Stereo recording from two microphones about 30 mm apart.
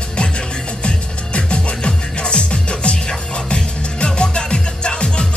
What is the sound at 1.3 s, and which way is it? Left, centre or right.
Music, left.